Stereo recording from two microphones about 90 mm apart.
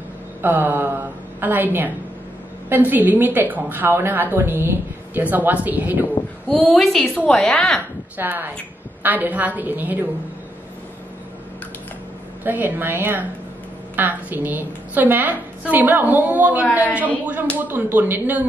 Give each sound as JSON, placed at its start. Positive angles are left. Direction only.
{"t": 0.4, "sound": "a sound", "side_deg": -20}
{"t": 2.7, "sound": "a woman's voice", "side_deg": -20}
{"t": 6.5, "sound": "a woman's voice", "side_deg": 5}
{"t": 8.2, "sound": "a woman's voice", "side_deg": -20}
{"t": 12.4, "sound": "a woman's voice", "side_deg": -20}